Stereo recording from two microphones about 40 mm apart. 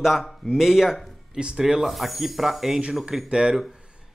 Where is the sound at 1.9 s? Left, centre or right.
Centre.